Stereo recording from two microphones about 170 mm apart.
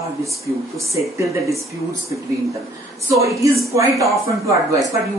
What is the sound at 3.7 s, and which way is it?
Speech, 20° right (ahead or behind).